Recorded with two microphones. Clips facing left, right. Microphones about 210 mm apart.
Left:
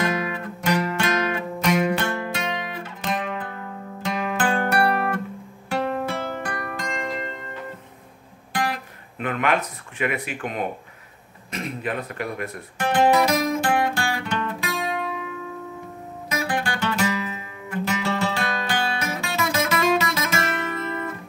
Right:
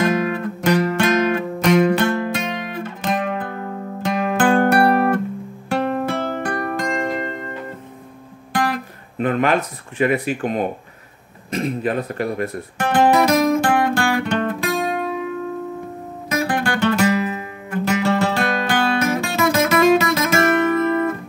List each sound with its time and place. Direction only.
0.0 s music: 50° right (ahead or behind)
9.2 s speech: 35° right (ahead or behind)
12.7 s music: 50° right (ahead or behind)
16.3 s music: 50° right (ahead or behind)